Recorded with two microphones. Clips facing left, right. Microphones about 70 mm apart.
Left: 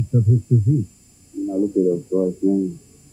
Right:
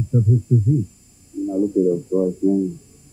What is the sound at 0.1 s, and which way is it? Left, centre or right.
Speech, centre.